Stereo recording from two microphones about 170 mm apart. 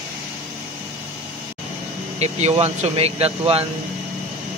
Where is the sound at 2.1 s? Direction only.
40° right (ahead or behind).